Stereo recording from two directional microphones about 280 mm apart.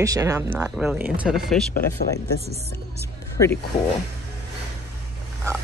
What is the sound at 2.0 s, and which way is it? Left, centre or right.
Speech, left.